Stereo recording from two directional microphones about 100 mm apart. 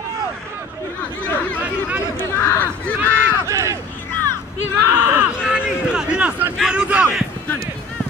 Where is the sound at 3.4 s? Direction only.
30° right (ahead or behind).